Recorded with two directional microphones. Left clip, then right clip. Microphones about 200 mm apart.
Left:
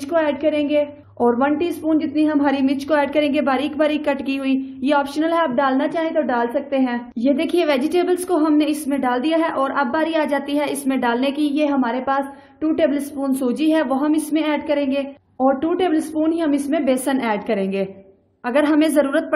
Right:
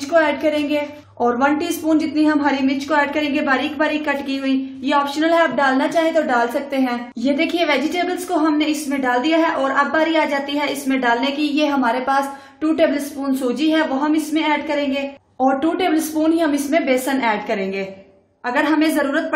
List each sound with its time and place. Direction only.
0.1 s a woman's voice: 30° left (ahead or behind)
2.2 s a woman's voice: 40° left (ahead or behind); by 7.3 s 25° left (ahead or behind)
7.3 s a woman's voice: 40° left (ahead or behind)
13.4 s a woman's voice: 40° left (ahead or behind)
15.6 s a woman's voice: 25° left (ahead or behind)
16.8 s a woman's voice: 40° left (ahead or behind)